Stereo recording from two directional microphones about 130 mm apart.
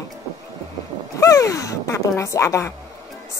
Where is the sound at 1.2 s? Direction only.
25° left (ahead or behind).